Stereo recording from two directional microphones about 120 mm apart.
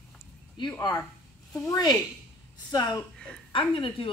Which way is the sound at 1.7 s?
30° left (ahead or behind).